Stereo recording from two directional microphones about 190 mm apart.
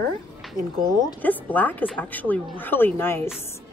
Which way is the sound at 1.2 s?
10° left (ahead or behind).